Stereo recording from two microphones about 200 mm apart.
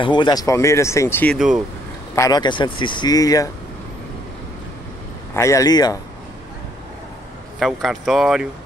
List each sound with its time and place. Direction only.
0.0 s speech: 25° left (ahead or behind)
5.3 s speech: 15° left (ahead or behind)
7.5 s speech: centre (ahead or behind)